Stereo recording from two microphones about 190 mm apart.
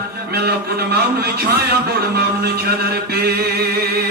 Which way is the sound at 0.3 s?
55° right (ahead or behind).